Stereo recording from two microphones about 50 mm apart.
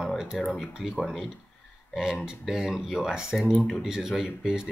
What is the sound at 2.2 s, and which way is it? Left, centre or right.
Speech, centre.